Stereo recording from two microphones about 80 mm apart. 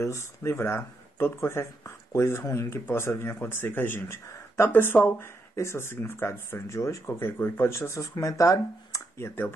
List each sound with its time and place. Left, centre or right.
0.0 s speech: left
7.7 s speech: left
9.2 s speech: left